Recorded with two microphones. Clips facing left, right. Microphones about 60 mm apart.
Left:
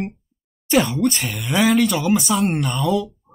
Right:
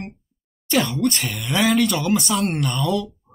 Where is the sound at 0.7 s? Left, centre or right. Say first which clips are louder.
Left 3 dB; centre.